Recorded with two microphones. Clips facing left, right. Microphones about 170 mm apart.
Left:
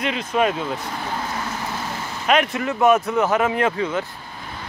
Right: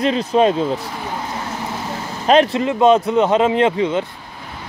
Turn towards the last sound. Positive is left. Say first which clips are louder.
# right 5 dB
turn(degrees=-25)  # may be behind; listen again after turning